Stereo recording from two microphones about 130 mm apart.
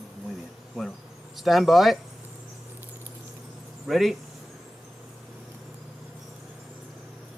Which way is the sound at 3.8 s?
Centre (ahead or behind).